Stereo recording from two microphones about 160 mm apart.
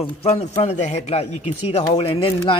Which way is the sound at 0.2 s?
40° left (ahead or behind).